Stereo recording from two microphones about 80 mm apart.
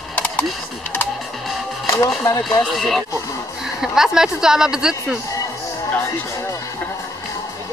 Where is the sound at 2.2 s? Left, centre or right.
Left.